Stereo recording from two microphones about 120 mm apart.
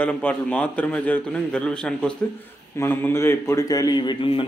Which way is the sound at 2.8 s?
20° left (ahead or behind).